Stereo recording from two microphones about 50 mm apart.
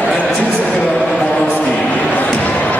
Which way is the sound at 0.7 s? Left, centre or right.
Left.